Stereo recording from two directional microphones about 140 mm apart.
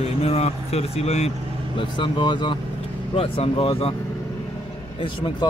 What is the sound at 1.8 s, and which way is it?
Speech, 35° left (ahead or behind).